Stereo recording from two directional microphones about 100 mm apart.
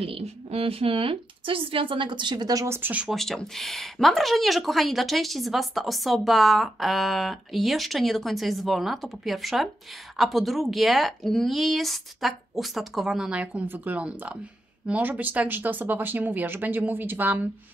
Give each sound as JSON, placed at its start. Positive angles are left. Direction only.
{"t": 0.0, "sound": "speech", "side_deg": -75}
{"t": 2.6, "sound": "speech", "side_deg": -25}
{"t": 3.1, "sound": "speech", "side_deg": 5}